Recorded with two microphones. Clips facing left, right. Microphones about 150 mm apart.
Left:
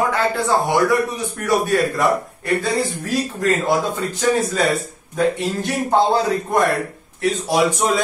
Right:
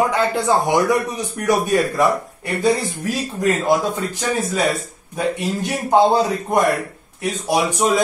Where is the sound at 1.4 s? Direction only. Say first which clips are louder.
Right 1 dB; 15° right (ahead or behind).